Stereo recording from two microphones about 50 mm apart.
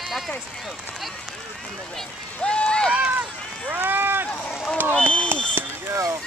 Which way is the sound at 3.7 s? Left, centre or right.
Right.